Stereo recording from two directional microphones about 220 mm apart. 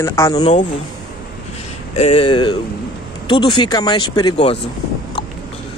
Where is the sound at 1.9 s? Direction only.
25° left (ahead or behind).